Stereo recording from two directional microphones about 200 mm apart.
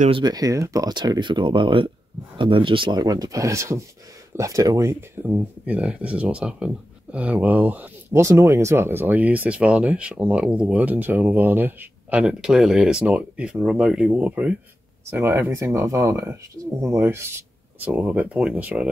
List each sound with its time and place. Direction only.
0.2 s speech: 20° right (ahead or behind)